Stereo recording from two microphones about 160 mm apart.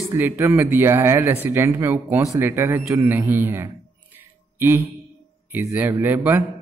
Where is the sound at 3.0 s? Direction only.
10° right (ahead or behind).